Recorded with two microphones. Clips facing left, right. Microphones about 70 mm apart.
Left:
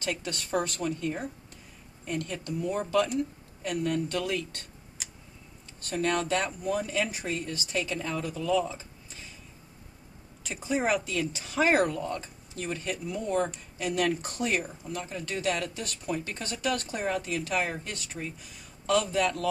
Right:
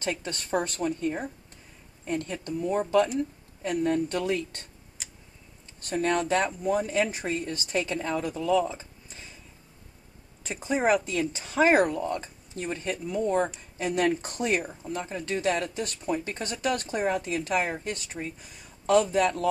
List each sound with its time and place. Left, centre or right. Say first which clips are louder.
0.0 s speech: right 1 dB; right
5.8 s speech: right 2 dB; right
10.7 s a man's voice: right 3 dB; right